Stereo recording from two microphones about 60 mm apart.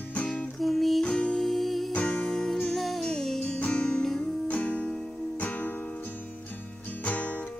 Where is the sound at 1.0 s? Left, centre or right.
Centre.